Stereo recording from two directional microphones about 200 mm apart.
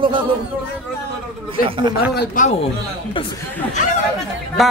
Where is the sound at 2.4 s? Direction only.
40° left (ahead or behind).